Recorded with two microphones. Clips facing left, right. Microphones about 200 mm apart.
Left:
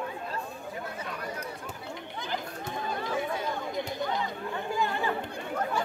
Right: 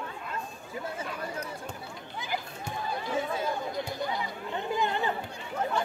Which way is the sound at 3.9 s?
20° left (ahead or behind).